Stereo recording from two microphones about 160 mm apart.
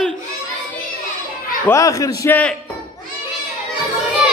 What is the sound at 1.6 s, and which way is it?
Speech, 20° left (ahead or behind).